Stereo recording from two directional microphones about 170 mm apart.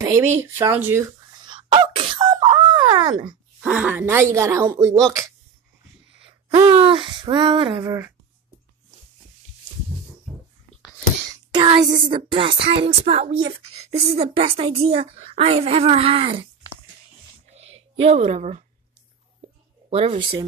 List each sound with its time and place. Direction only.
0.0 s speech: 15° right (ahead or behind)
1.4 s wail: 30° right (ahead or behind)
3.6 s speech: 5° right (ahead or behind)
6.1 s speech: 35° right (ahead or behind)
7.8 s speech: 20° right (ahead or behind)
11.5 s speech: 30° right (ahead or behind)
17.9 s speech: 35° right (ahead or behind)
19.9 s speech: 35° right (ahead or behind)